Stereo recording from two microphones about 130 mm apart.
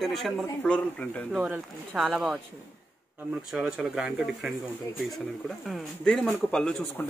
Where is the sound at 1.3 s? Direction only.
10° right (ahead or behind).